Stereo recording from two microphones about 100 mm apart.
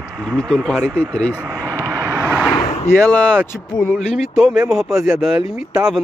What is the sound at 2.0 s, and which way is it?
Vehicle, 30° right (ahead or behind).